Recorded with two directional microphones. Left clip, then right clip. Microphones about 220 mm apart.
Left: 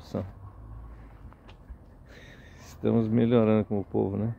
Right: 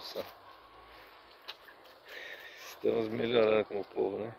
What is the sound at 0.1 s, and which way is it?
Speech, 20° left (ahead or behind).